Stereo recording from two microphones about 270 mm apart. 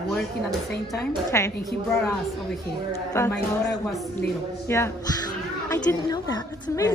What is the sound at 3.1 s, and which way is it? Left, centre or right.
Speech, centre.